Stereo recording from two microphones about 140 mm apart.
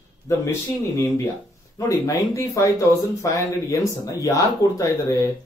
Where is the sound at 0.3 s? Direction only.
20° left (ahead or behind).